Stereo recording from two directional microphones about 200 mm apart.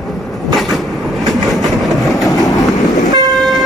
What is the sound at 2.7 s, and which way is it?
Vehicle, 20° left (ahead or behind).